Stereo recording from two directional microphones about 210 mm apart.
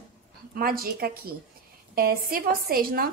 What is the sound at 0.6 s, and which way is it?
A woman's voice, 45° right (ahead or behind).